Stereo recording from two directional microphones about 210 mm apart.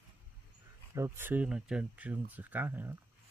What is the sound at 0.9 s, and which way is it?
Speech, 10° right (ahead or behind).